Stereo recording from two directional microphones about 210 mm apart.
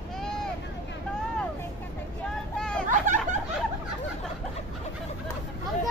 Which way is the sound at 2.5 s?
5° left (ahead or behind).